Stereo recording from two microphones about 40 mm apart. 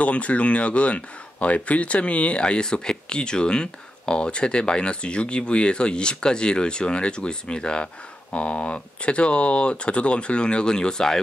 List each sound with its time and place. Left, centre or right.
0.0 s speech: left; by 11.1 s centre